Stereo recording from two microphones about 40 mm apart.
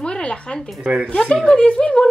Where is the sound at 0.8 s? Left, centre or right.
Right.